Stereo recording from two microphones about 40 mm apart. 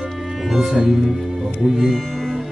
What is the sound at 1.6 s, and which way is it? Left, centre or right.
Speech, centre.